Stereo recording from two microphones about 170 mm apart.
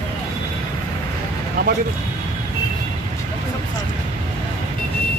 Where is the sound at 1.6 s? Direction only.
60° right (ahead or behind).